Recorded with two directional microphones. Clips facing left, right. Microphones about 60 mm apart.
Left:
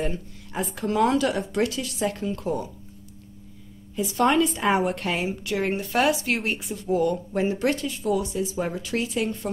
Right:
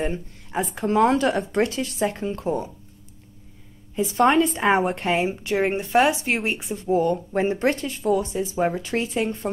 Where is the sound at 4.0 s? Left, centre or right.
Right.